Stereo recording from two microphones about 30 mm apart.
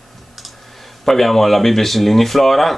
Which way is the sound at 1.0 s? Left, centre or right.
Centre.